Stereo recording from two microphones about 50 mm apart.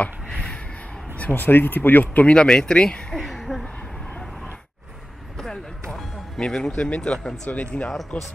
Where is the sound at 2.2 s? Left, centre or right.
Centre.